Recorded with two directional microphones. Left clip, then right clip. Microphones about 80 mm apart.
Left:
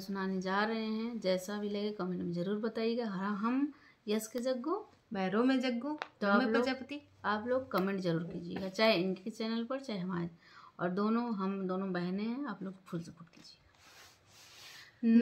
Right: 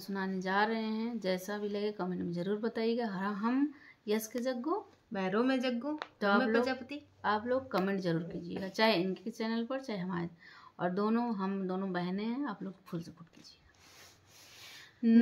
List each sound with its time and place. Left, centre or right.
0.0 s a woman's voice: right
5.1 s speech: left
6.1 s speech: right
6.4 s speech: left
7.2 s a woman's voice: right
15.0 s a woman's voice: right